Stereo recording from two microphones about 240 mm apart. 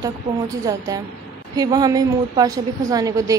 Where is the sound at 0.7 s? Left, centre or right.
Centre.